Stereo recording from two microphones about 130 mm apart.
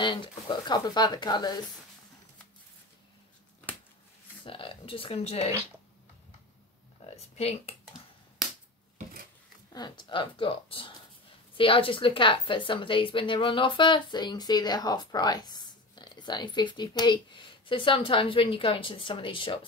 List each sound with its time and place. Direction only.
0.0 s a woman's voice: 40° left (ahead or behind)
4.5 s speech: 40° left (ahead or behind)
7.2 s speech: 50° left (ahead or behind)
9.7 s a woman's voice: 35° left (ahead or behind)